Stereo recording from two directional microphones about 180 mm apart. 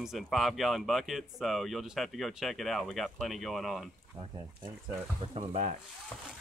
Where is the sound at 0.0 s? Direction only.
Centre (ahead or behind).